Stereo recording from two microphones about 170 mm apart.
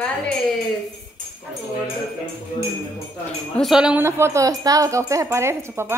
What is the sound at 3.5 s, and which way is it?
Speech, centre (ahead or behind).